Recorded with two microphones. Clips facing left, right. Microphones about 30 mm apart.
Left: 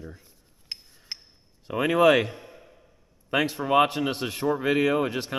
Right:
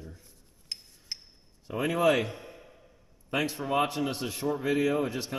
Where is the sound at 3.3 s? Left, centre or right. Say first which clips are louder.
Left 6 dB; left.